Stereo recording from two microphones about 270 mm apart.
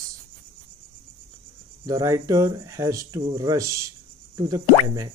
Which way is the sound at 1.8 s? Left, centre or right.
Centre.